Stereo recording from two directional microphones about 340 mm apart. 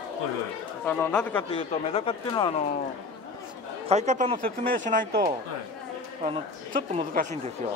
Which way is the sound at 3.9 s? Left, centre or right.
Centre.